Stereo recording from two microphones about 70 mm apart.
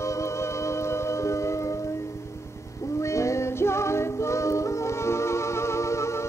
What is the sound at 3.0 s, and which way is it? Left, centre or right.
Music, left.